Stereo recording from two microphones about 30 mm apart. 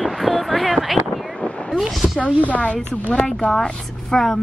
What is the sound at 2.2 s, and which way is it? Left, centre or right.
Speech, left.